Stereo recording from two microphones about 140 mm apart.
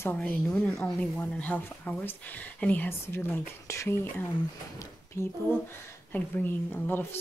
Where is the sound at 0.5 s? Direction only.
10° left (ahead or behind).